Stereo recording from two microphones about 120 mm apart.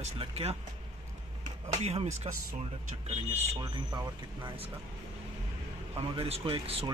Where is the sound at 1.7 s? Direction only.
65° right (ahead or behind).